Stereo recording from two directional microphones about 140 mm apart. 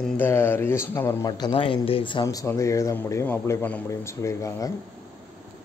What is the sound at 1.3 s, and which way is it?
Speech, 30° left (ahead or behind).